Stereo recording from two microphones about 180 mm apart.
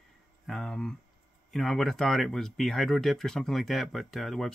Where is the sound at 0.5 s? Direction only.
5° left (ahead or behind).